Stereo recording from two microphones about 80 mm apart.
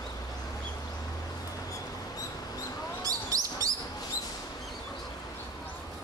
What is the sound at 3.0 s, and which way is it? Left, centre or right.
Bird, right.